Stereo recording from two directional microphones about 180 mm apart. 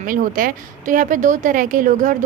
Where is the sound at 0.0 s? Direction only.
50° right (ahead or behind).